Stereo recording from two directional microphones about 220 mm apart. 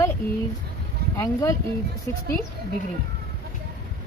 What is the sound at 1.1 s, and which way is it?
Speech, 15° left (ahead or behind).